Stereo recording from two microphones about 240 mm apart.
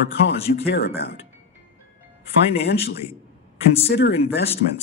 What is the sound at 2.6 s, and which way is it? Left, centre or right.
Speech, left.